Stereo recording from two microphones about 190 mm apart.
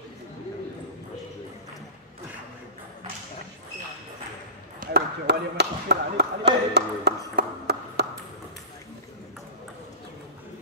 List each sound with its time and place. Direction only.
4.7 s basketball bounce: 55° right (ahead or behind)